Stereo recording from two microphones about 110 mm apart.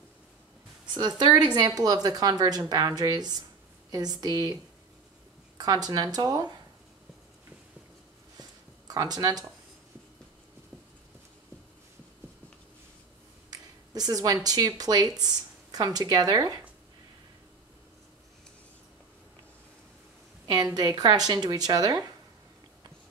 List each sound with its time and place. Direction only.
0.9 s speech: 40° right (ahead or behind)
5.6 s speech: 35° right (ahead or behind)
8.4 s a sound: 35° right (ahead or behind)
13.9 s speech: 35° right (ahead or behind)
20.5 s speech: 40° right (ahead or behind)